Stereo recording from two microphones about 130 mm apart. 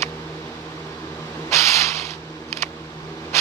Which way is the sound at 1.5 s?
20° left (ahead or behind).